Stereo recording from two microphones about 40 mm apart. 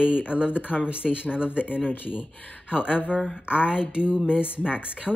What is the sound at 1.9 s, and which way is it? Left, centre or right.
Speech, left.